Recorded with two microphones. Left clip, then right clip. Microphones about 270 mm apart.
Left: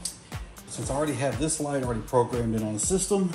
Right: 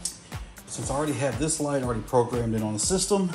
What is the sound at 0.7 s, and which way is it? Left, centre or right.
Speech, right.